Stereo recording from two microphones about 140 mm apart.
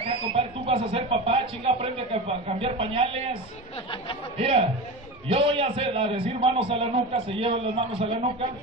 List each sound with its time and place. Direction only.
0.0 s speech: 40° right (ahead or behind)
4.4 s a man's voice: 45° right (ahead or behind)